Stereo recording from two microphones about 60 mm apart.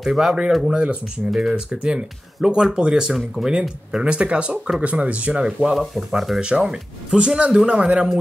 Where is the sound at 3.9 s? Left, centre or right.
Centre.